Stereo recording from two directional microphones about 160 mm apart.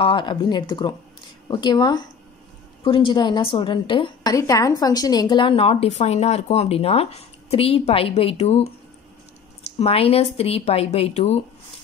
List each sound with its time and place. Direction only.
0.0 s a woman's voice: 30° left (ahead or behind)